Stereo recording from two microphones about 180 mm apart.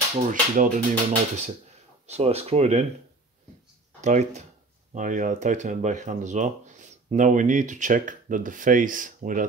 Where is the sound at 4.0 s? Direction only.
40° right (ahead or behind).